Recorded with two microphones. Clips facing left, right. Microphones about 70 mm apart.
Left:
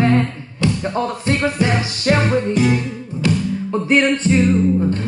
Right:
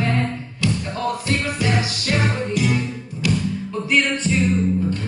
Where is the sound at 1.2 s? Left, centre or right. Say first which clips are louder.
Left 5 dB; left.